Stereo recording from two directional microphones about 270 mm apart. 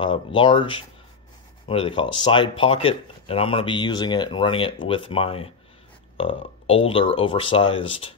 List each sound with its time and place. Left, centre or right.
0.0 s speech: centre